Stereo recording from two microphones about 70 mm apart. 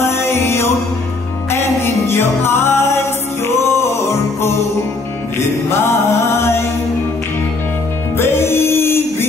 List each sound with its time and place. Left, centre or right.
0.0 s music: left
5.7 s music: left
8.2 s music: left